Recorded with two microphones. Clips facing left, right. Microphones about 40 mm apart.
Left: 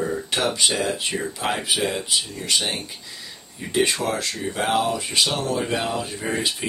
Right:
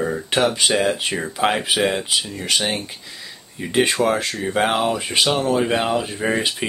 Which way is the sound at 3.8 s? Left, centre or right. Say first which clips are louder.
Right 4 dB; right.